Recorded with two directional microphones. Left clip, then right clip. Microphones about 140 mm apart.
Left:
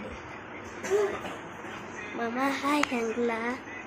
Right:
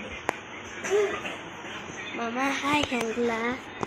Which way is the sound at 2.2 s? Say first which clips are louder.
Right 1 dB; 5° right (ahead or behind).